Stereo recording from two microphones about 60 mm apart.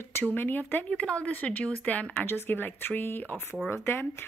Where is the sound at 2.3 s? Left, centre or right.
Left.